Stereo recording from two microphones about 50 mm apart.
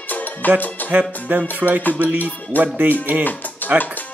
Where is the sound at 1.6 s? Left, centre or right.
Right.